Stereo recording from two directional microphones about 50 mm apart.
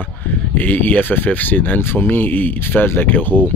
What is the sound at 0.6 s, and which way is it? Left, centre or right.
Speech, left.